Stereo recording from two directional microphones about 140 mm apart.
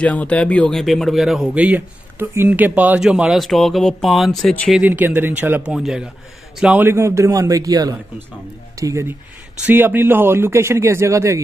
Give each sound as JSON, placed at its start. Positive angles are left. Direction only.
{"t": 0.0, "sound": "speech", "side_deg": 10}
{"t": 4.8, "sound": "a man's voice", "side_deg": -10}